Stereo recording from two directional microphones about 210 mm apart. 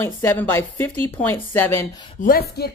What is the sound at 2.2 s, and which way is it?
Speech, 45° left (ahead or behind).